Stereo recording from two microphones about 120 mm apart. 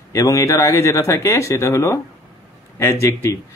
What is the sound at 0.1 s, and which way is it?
Speech, 25° left (ahead or behind).